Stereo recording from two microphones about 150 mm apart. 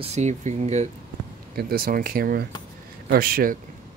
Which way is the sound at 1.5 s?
85° right.